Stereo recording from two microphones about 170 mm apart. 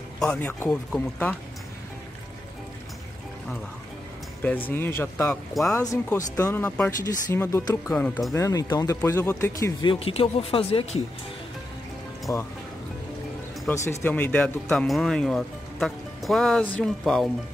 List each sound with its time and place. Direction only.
0.2 s speech: 5° left (ahead or behind)
4.4 s speech: 10° left (ahead or behind)
5.5 s speech: centre (ahead or behind)
6.1 s speech: 20° left (ahead or behind); by 11.0 s 35° left (ahead or behind)
12.3 s speech: 15° left (ahead or behind)
13.8 s speech: 10° left (ahead or behind)